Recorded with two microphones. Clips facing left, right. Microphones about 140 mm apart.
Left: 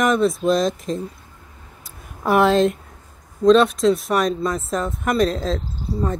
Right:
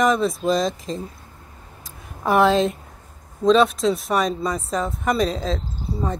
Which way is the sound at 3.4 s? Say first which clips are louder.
Left 3 dB; centre (ahead or behind).